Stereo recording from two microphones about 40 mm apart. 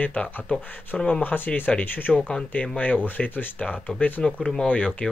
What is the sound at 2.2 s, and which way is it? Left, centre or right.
Speech, left.